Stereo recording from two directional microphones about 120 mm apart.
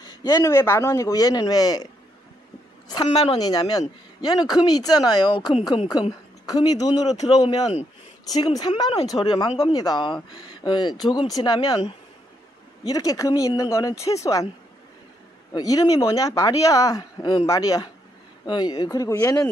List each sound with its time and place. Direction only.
0.0 s a woman's voice: 35° left (ahead or behind)
2.9 s a woman's voice: 35° left (ahead or behind)
15.5 s speech: 30° left (ahead or behind)